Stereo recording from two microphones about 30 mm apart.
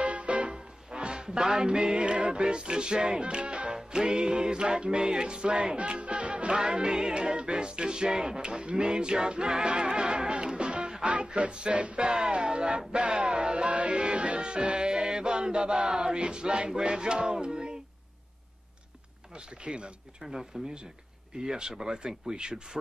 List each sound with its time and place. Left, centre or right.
0.0 s music: right
0.5 s music: right
2.0 s music: right
3.7 s music: right
5.8 s music: right
6.5 s music: right
8.5 s music: right
12.0 s music: right
19.3 s music: right
20.2 s music: right